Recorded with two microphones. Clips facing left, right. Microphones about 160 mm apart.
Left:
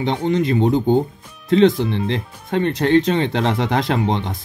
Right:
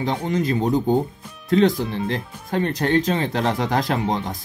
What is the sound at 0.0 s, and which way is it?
Speech, 25° left (ahead or behind).